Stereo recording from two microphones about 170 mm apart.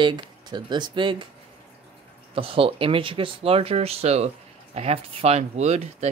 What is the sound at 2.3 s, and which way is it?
Speech, 35° right (ahead or behind).